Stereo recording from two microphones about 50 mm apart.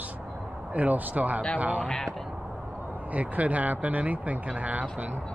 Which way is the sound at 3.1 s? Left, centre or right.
Right.